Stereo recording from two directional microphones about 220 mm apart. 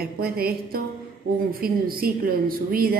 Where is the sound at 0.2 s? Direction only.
45° right (ahead or behind).